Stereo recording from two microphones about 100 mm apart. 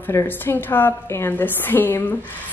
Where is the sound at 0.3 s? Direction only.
20° left (ahead or behind).